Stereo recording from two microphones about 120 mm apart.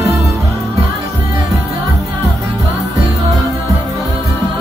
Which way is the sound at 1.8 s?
25° right (ahead or behind).